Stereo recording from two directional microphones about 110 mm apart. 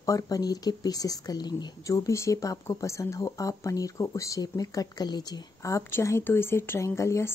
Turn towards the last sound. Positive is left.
turn(degrees=25)  # may be behind; listen again after turning